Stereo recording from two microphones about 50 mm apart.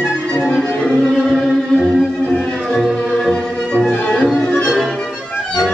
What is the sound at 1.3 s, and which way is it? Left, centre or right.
Music, centre.